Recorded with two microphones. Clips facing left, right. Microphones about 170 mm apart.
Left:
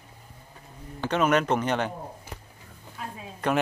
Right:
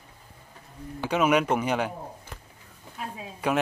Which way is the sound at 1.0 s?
10° right (ahead or behind).